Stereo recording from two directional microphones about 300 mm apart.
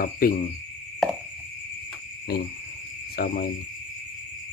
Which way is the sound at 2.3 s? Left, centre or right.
Left.